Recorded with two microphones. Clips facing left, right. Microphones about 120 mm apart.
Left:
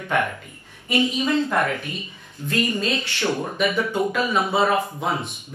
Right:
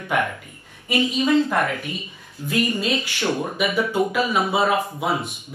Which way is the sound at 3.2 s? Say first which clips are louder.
Left 1 dB; 25° right (ahead or behind).